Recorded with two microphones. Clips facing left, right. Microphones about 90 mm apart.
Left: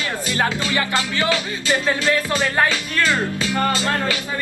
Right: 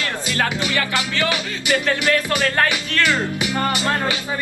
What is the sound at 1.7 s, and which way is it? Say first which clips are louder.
Speech: even; 20° left (ahead or behind).